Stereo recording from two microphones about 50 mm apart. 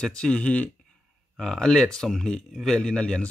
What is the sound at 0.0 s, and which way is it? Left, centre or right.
Speech, centre.